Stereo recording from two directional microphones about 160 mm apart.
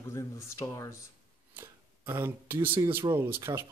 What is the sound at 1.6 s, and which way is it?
Speech, 15° right (ahead or behind).